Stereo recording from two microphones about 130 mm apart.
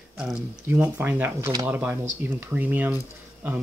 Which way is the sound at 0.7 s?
15° right (ahead or behind).